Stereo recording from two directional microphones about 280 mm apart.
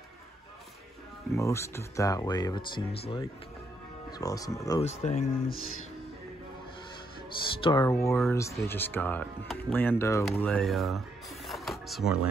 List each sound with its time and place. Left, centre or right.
1.3 s speech: centre
4.8 s speech: left
7.6 s speech: centre
11.4 s music: centre